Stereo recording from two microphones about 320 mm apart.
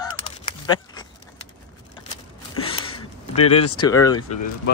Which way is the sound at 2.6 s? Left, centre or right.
Centre.